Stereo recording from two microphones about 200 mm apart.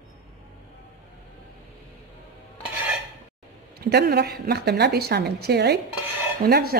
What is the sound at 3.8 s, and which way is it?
Speech, 50° right (ahead or behind).